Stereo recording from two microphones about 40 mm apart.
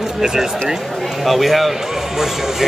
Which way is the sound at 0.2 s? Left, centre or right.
Centre.